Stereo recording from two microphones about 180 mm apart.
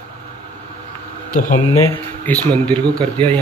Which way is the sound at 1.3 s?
50° left (ahead or behind).